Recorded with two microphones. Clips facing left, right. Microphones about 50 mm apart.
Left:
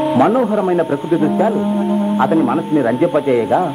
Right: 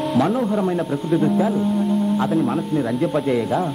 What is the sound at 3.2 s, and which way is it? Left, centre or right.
Speech, left.